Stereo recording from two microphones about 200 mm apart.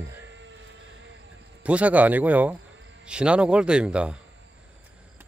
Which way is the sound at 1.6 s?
5° right (ahead or behind).